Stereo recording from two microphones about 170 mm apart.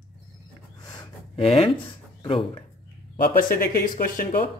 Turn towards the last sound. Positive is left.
turn(degrees=55)  # may be behind; listen again after turning